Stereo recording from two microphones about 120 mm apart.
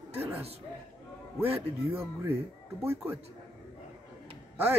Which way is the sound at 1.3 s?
15° right (ahead or behind).